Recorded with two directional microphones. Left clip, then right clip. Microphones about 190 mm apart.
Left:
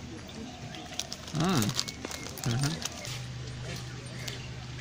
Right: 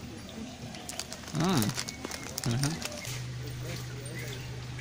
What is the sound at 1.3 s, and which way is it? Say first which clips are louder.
Speech: left 1 dB; 5° left (ahead or behind).